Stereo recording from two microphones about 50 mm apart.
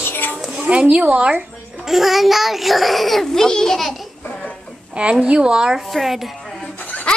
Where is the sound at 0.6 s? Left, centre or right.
Right.